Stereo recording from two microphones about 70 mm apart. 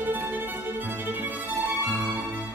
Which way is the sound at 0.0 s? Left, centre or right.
Right.